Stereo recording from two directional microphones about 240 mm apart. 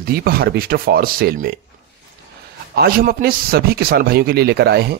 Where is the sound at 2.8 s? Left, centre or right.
Right.